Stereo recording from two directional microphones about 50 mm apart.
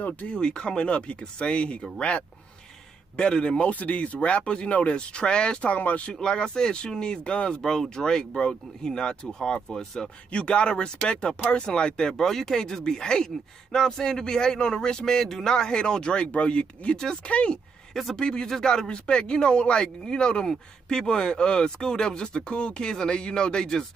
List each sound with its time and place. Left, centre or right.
0.0 s speech: left
0.4 s speech: centre
5.7 s speech: left
6.2 s speech: centre
10.3 s speech: left